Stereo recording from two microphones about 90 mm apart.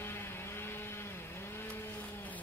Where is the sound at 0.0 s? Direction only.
25° left (ahead or behind).